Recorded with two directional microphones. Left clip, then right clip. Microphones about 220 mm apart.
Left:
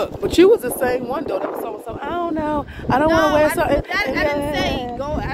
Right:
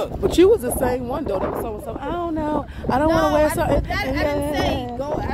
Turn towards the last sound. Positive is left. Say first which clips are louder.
# left 1 dB
turn(degrees=-15)  # may be behind; listen again after turning